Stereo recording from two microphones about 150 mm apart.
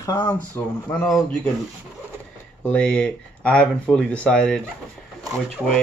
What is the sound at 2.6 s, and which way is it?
Speech, 5° left (ahead or behind).